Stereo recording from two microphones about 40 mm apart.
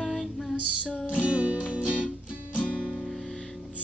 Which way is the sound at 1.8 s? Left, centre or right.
Right.